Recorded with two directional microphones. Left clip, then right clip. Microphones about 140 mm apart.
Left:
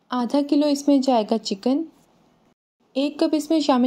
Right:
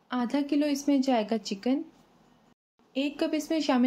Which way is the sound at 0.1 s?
40° left (ahead or behind).